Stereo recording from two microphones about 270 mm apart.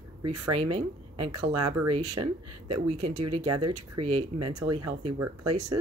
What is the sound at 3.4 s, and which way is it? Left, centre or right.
Speech, right.